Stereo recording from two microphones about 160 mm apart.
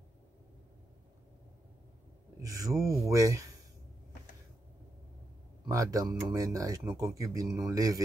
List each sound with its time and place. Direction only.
2.4 s speech: 20° right (ahead or behind)
5.7 s speech: 20° right (ahead or behind)